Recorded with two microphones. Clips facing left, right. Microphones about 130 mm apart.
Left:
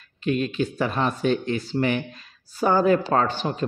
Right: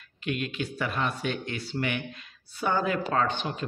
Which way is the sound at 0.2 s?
35° left (ahead or behind).